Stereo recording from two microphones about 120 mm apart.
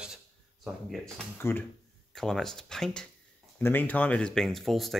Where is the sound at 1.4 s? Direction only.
20° left (ahead or behind).